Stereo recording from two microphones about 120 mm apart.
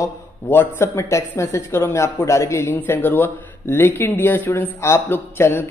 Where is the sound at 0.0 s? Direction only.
20° left (ahead or behind).